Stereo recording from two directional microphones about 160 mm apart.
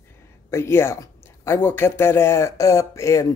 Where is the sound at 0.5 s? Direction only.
15° left (ahead or behind).